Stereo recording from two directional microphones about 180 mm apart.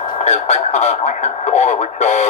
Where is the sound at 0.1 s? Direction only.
35° left (ahead or behind).